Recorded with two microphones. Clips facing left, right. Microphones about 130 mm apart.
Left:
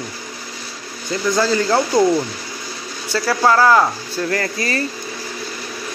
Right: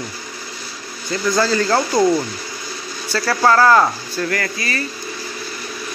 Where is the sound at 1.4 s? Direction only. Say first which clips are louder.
Left 1 dB; 15° left (ahead or behind).